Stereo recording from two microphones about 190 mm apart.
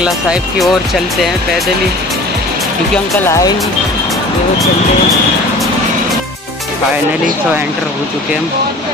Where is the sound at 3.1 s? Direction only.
15° left (ahead or behind).